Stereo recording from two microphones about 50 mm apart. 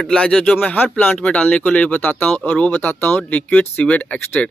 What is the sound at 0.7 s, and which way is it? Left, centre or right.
Speech, left.